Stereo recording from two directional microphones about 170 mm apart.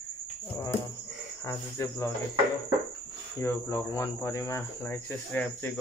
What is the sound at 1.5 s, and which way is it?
Speech, 15° left (ahead or behind).